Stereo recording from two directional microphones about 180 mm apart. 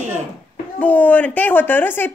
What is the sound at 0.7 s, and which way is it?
A woman's voice, 10° left (ahead or behind).